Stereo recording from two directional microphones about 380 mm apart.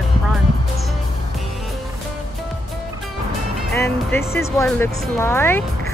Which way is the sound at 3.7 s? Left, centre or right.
Centre.